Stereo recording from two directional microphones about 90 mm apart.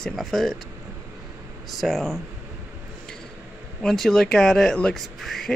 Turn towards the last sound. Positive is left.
turn(degrees=5)  # may be behind; listen again after turning